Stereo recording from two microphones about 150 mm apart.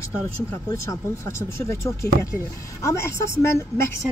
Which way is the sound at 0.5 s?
20° left (ahead or behind).